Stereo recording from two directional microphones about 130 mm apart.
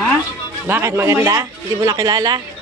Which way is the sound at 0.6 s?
20° right (ahead or behind).